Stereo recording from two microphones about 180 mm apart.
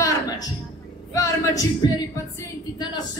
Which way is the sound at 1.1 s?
20° left (ahead or behind).